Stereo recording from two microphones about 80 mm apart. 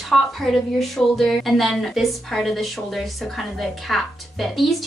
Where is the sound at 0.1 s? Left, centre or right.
Centre.